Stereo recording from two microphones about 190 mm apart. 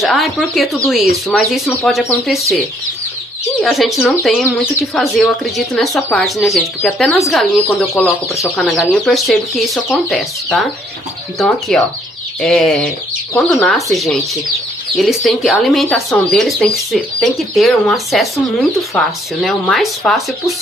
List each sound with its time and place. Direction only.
0.0 s speech: centre (ahead or behind)
3.6 s speech: centre (ahead or behind)
7.9 s speech: 15° left (ahead or behind)
8.5 s speech: centre (ahead or behind)